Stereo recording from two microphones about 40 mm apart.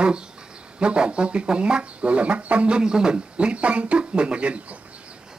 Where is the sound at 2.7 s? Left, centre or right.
Centre.